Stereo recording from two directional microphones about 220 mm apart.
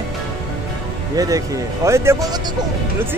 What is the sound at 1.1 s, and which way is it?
Speech, 15° right (ahead or behind).